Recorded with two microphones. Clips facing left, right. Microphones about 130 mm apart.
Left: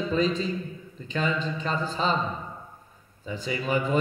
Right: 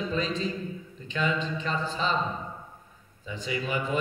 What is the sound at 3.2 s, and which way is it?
Speech, 40° left (ahead or behind).